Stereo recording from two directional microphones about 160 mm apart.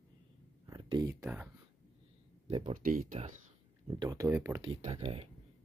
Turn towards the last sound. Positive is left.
turn(degrees=-40)  # may be behind; listen again after turning